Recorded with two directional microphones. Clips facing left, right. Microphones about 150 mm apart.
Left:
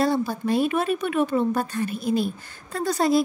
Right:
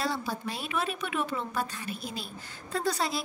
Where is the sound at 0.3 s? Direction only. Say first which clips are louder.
Left 11 dB; 50° left (ahead or behind).